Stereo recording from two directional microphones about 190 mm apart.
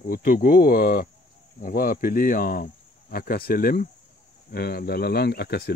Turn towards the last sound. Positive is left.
turn(degrees=55)  # may be behind; listen again after turning